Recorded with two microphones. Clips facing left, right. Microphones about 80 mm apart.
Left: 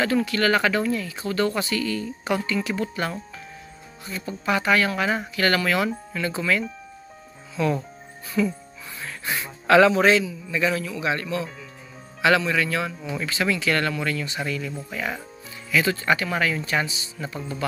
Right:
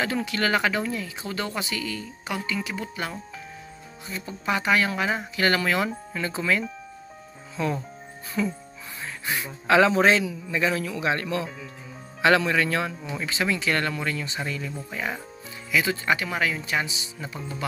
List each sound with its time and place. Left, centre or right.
0.0 s speech: right
4.1 s speech: right
8.4 s speech: right
9.7 s speech: right
13.1 s speech: right